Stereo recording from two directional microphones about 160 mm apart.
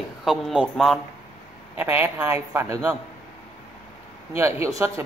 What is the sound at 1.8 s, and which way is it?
A woman's voice, 10° right (ahead or behind).